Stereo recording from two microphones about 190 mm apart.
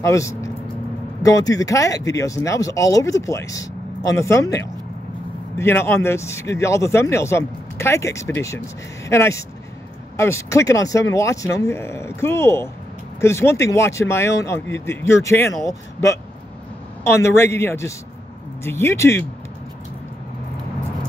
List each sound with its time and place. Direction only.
0.0 s speech: 15° left (ahead or behind)